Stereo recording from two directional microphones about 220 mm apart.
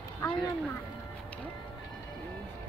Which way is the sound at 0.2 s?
15° left (ahead or behind).